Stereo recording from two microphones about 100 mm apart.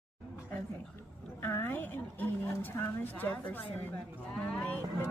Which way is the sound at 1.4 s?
20° left (ahead or behind).